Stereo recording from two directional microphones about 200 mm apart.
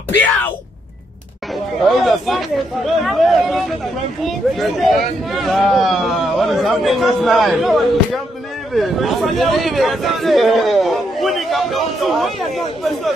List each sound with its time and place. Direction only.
1.8 s a man's voice: centre (ahead or behind)